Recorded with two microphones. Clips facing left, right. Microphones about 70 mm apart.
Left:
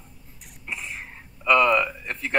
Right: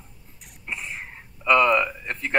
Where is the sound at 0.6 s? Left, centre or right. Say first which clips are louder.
Right 1 dB; centre.